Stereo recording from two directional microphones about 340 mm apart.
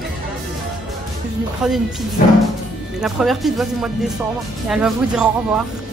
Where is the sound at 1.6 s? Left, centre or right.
Centre.